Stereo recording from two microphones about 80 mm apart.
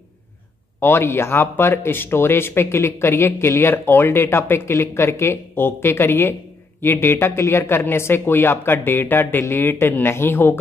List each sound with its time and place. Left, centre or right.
0.7 s speech: left